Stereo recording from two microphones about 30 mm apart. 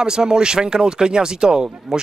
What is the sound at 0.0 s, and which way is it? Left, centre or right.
Speech, right.